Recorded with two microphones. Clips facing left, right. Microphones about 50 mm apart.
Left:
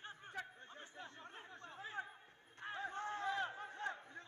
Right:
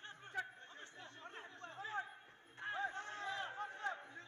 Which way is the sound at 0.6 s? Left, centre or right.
Left.